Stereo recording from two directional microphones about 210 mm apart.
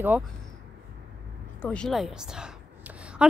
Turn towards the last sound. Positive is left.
turn(degrees=-5)  # may be behind; listen again after turning